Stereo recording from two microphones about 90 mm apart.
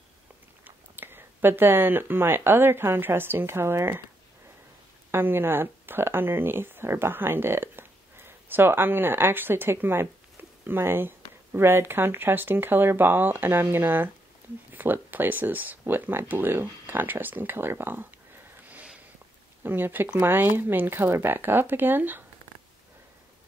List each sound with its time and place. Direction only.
0.7 s speech: 25° right (ahead or behind)
5.1 s speech: 25° right (ahead or behind)
18.7 s sniff: 15° right (ahead or behind)
19.6 s speech: 20° right (ahead or behind)